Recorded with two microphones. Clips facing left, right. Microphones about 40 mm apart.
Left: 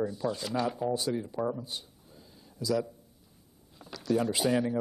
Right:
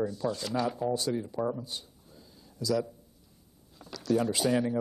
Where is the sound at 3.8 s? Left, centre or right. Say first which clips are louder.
Right 1 dB; left.